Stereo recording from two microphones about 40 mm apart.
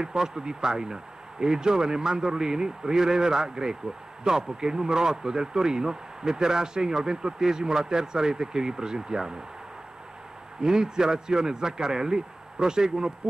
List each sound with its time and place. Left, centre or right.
0.0 s a man's voice: centre
10.6 s a man's voice: centre